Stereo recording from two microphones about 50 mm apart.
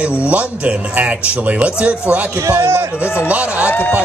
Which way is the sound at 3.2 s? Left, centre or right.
Right.